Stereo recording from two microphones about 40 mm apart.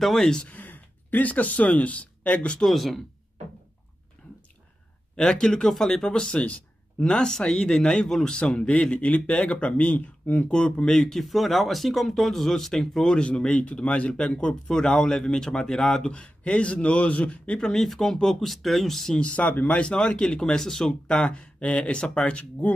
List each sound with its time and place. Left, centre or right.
0.0 s speech: centre
0.5 s speech: left
2.7 s speech: centre
4.2 s whispering: left
5.1 s speech: left
6.3 s speech: left
7.0 s speech: left
10.5 s speech: left
10.9 s speech: centre
13.2 s speech: left
17.6 s speech: centre
17.8 s speech: centre
19.1 s speech: left
19.8 s speech: left